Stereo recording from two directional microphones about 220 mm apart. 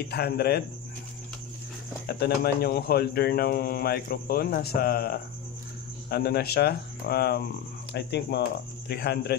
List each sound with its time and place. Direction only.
0.1 s a man's voice: 45° left (ahead or behind)
2.0 s a man's voice: 45° left (ahead or behind)